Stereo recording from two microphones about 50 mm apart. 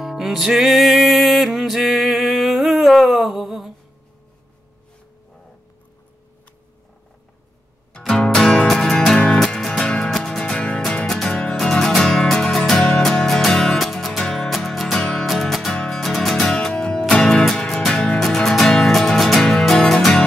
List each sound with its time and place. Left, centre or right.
0.0 s music: centre
8.2 s music: centre
11.5 s music: centre